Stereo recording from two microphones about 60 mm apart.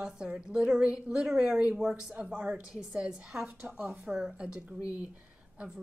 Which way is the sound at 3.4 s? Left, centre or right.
Right.